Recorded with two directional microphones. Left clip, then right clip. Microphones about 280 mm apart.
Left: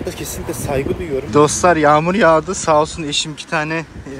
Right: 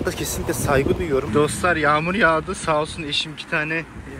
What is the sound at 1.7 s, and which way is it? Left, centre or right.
Speech, centre.